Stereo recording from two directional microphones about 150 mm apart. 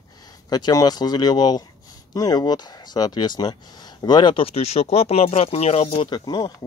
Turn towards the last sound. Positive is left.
turn(degrees=25)  # may be behind; listen again after turning